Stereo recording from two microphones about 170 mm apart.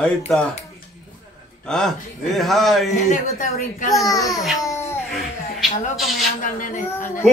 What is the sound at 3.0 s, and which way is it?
Speech, 50° left (ahead or behind).